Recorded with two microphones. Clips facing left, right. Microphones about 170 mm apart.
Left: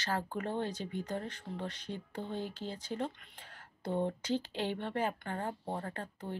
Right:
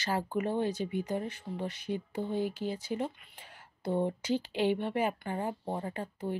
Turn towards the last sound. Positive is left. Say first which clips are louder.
# right 5 dB
turn(degrees=-10)  # may be behind; listen again after turning